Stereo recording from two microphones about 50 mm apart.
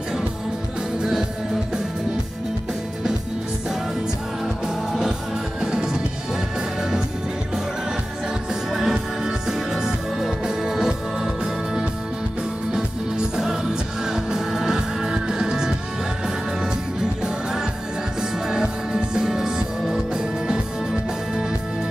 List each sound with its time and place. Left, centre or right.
5.6 s music: centre
8.7 s music: centre
12.7 s music: centre
18.5 s music: centre